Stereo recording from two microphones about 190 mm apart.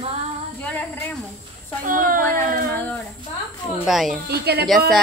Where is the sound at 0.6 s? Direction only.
10° left (ahead or behind).